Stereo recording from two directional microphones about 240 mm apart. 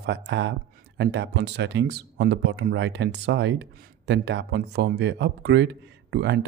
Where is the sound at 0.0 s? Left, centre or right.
Right.